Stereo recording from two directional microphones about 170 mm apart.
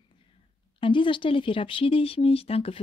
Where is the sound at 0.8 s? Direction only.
30° left (ahead or behind).